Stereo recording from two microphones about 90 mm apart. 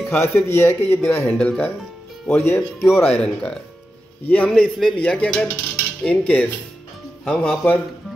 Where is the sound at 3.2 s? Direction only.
10° left (ahead or behind).